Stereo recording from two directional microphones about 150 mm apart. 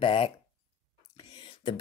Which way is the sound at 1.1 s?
35° left (ahead or behind).